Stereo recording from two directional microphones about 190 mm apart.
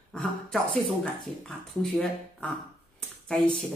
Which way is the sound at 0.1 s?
5° left (ahead or behind).